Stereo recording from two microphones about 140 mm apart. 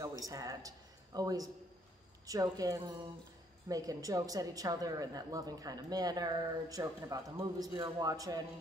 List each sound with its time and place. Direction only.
0.2 s a man's voice: 25° right (ahead or behind)